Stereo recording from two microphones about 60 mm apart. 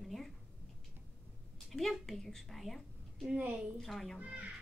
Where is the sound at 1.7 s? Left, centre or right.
Centre.